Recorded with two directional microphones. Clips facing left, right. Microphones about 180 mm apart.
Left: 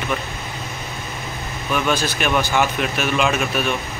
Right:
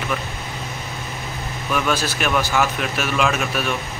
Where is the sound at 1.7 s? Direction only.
5° right (ahead or behind).